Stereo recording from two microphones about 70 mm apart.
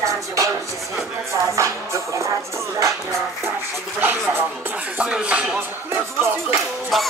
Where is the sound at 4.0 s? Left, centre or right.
Right.